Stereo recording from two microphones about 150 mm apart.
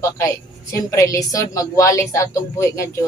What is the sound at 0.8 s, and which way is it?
A woman's voice, 20° left (ahead or behind).